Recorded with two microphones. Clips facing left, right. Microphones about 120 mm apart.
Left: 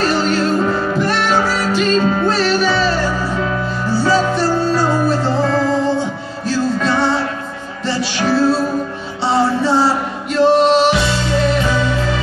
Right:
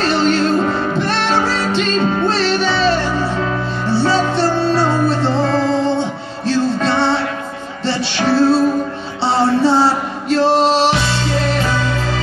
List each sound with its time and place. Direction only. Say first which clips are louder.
0.0 s music: right 1 dB; 30° right (ahead or behind)
10.3 s male singing: left 2 dB; 30° right (ahead or behind)